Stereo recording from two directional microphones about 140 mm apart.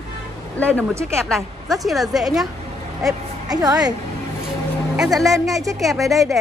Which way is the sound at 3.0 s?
25° right (ahead or behind).